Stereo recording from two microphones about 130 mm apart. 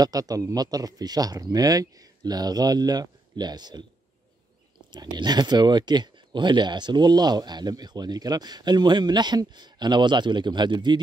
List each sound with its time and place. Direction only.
0.0 s speech: 30° right (ahead or behind)
4.9 s speech: 35° right (ahead or behind)